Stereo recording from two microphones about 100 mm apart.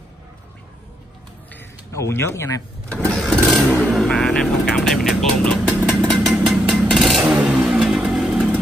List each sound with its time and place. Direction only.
1.9 s speech: 30° left (ahead or behind)
2.9 s vehicle: 10° left (ahead or behind); by 8.4 s 5° right (ahead or behind)